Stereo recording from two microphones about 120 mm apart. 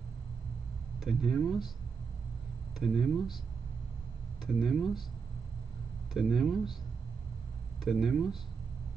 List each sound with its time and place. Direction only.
0.9 s speech: 5° right (ahead or behind)
2.8 s speech: 5° right (ahead or behind)
4.6 s speech: centre (ahead or behind)
6.1 s speech: 5° right (ahead or behind)
7.8 s speech: 5° right (ahead or behind)